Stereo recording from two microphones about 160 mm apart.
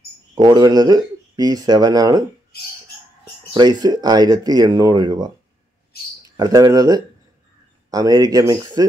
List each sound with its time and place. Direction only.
0.3 s speech: 25° right (ahead or behind)
3.5 s speech: 25° right (ahead or behind)
6.3 s speech: 25° right (ahead or behind)